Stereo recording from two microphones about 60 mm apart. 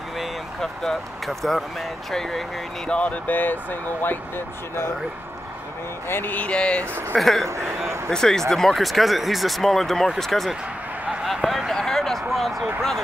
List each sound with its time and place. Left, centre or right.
0.2 s speech: centre
2.9 s speech: left
6.0 s speech: left
6.3 s speech: centre
7.2 s speech: centre
11.2 s a sound: centre